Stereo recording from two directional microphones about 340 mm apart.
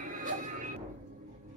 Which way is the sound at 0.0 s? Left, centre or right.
Right.